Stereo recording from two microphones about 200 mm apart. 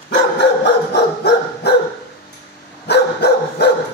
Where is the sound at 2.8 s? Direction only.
55° left (ahead or behind).